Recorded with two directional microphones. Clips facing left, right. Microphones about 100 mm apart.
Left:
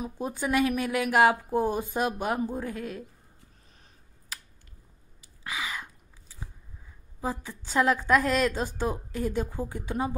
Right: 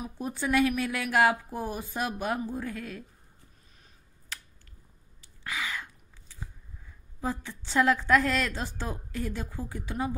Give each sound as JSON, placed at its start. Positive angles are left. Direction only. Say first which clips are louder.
{"t": 0.0, "sound": "a woman's voice", "louder": "left 2 dB", "side_deg": 20}
{"t": 5.4, "sound": "a sound", "louder": "even", "side_deg": 20}
{"t": 7.8, "sound": "a woman's voice", "louder": "even", "side_deg": 25}